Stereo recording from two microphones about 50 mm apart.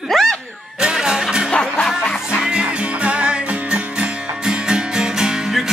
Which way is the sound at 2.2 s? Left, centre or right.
Centre.